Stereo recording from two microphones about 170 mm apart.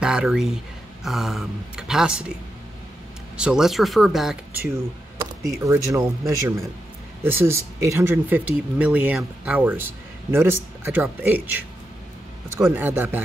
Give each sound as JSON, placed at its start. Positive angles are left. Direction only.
{"t": 0.0, "sound": "speech", "side_deg": -5}
{"t": 3.3, "sound": "speech", "side_deg": -5}
{"t": 5.4, "sound": "speech", "side_deg": -15}